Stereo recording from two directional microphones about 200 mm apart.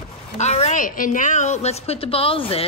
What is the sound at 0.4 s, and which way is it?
A woman's voice, 35° left (ahead or behind).